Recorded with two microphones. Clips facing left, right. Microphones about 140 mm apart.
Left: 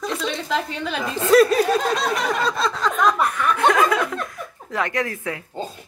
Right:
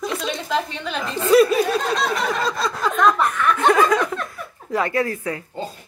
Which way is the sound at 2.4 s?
5° right (ahead or behind).